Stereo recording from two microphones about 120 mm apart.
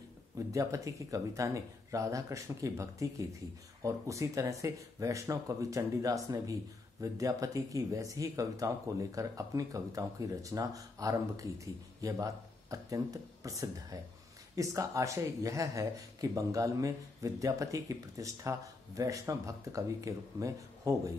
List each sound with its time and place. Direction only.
0.5 s speech: 25° right (ahead or behind)